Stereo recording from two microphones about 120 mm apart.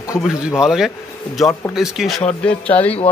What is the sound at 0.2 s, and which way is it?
A man's voice, 5° right (ahead or behind).